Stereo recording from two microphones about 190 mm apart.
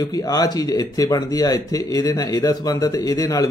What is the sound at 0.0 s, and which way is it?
A man's voice, 20° left (ahead or behind).